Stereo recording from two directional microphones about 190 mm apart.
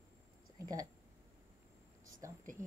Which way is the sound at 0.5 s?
20° right (ahead or behind).